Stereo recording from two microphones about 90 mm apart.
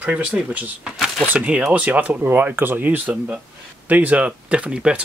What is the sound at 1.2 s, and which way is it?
Speech, 15° right (ahead or behind).